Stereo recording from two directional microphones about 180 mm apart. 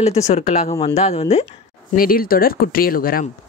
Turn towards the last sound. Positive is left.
turn(degrees=55)  # may be behind; listen again after turning